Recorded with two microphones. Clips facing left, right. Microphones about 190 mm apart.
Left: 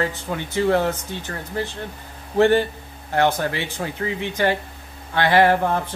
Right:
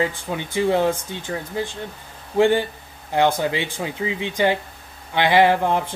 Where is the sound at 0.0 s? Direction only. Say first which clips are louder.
Right 1 dB; 15° right (ahead or behind).